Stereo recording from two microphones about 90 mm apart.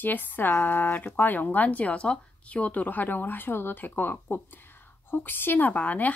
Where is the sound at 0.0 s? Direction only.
20° left (ahead or behind).